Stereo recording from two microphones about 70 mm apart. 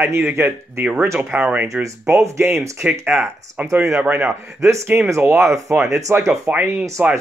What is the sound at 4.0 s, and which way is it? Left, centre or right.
Speech, right.